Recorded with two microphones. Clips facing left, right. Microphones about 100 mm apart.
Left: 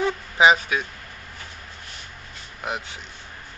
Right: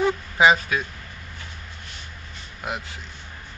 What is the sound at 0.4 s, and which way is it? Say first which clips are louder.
Speech: left 1 dB; 15° left (ahead or behind).